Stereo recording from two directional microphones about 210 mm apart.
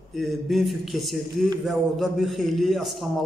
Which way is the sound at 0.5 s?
Centre (ahead or behind).